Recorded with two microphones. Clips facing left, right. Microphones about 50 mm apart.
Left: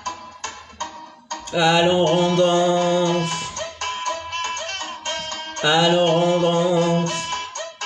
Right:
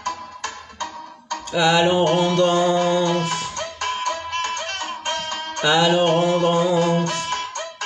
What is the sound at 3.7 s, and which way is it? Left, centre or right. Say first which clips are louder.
Music: right 2 dB; right.